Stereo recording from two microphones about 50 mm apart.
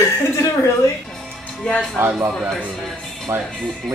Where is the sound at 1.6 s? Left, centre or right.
Left.